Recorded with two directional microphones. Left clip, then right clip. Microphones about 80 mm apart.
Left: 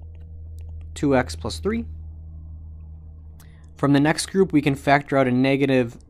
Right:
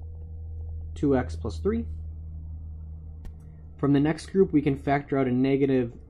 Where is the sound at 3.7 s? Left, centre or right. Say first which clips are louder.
Left 5 dB; left.